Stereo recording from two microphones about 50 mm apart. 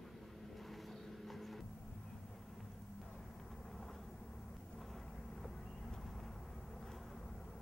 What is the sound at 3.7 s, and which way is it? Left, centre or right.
Vehicle, centre.